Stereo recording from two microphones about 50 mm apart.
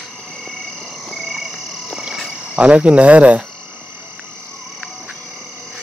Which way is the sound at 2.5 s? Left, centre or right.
Right.